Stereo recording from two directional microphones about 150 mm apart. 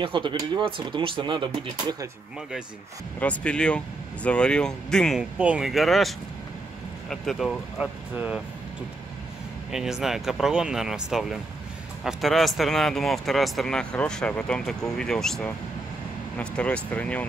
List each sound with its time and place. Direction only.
0.0 s speech: 35° right (ahead or behind)
3.2 s speech: 10° left (ahead or behind)
9.7 s speech: 5° right (ahead or behind)